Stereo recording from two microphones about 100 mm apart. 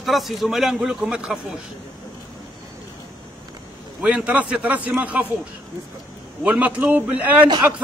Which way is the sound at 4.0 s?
10° right (ahead or behind).